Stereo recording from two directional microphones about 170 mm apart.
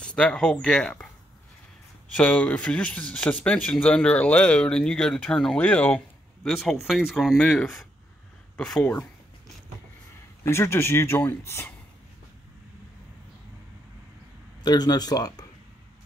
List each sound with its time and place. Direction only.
0.0 s speech: 5° left (ahead or behind)
2.1 s speech: 5° left (ahead or behind)
10.4 s speech: 15° left (ahead or behind)
14.6 s speech: 25° left (ahead or behind)